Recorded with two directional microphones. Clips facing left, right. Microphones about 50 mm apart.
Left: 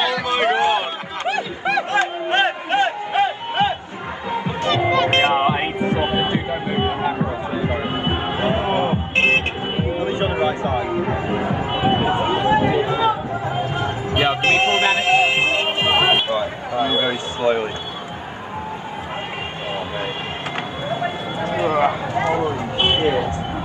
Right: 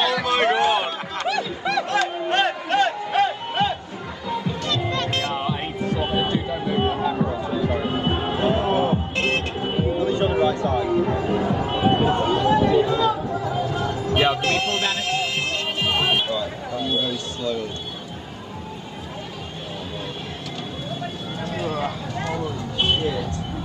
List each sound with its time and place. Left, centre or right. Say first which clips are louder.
0.0 s music: left 1 dB; centre; by 5.7 s left
5.8 s music: left 4 dB; left
20.9 s a sound: left 9 dB; left